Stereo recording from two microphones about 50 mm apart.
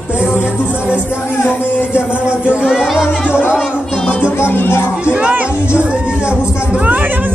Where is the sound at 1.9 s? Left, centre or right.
Right; by 3.1 s centre.